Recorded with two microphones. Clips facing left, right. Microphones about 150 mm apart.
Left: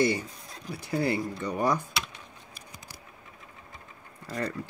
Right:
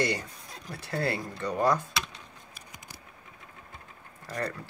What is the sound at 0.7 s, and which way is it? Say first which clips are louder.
Speech: left 3 dB; 15° left (ahead or behind).